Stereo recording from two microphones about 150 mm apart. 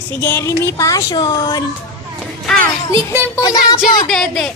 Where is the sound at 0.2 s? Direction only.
20° left (ahead or behind).